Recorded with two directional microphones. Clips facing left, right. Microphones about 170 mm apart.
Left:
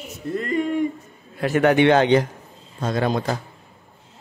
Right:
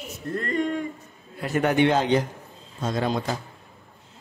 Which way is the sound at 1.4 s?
85° left.